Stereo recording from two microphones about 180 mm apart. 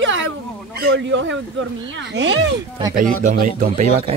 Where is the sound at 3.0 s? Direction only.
45° right (ahead or behind).